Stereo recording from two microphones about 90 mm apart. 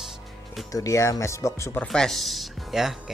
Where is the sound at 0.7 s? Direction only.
40° left (ahead or behind).